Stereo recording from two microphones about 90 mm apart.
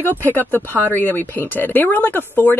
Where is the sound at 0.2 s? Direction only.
20° left (ahead or behind).